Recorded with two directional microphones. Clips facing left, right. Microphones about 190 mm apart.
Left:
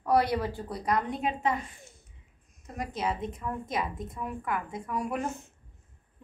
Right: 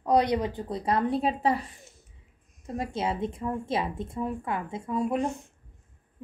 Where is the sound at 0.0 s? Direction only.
20° right (ahead or behind).